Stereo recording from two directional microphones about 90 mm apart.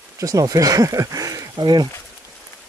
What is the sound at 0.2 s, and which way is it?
Speech, 40° right (ahead or behind).